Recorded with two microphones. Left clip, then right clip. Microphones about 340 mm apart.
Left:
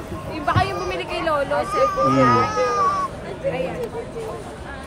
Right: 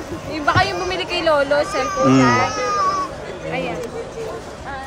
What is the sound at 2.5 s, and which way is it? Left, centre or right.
Speech, centre.